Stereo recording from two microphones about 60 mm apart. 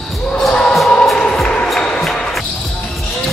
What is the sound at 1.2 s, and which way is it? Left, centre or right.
Music, centre.